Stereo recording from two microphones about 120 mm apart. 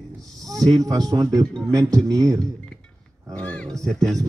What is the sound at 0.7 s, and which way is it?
A man's voice, 30° right (ahead or behind).